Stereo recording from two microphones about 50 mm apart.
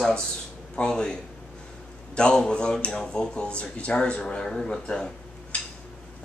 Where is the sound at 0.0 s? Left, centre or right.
Centre.